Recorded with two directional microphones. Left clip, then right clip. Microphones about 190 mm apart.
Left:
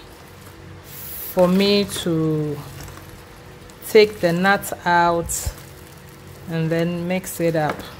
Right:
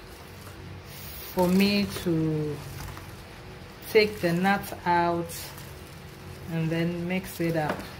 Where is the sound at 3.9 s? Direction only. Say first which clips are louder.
Left 8 dB; 40° left (ahead or behind).